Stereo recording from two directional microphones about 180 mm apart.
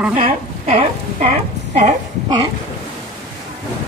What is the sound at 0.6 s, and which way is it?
Speech, 40° right (ahead or behind).